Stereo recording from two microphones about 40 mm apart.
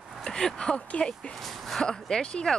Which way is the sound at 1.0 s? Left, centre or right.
Left.